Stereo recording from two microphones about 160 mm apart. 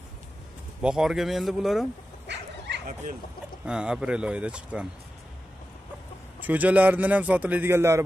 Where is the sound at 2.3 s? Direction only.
90° right.